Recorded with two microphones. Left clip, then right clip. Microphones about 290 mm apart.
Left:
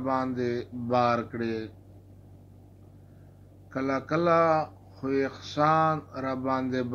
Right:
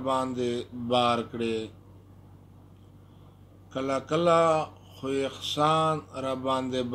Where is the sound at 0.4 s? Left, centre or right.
Right.